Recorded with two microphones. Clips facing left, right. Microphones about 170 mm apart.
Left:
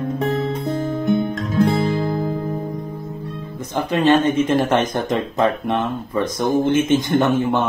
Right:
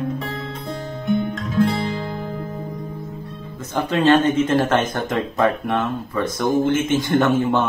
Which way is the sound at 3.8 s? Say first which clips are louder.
Even; 10° left (ahead or behind).